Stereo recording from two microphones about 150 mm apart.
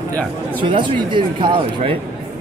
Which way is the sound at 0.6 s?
30° right (ahead or behind).